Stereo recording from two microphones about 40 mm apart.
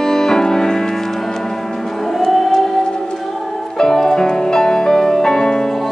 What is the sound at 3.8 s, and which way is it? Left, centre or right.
Music, centre.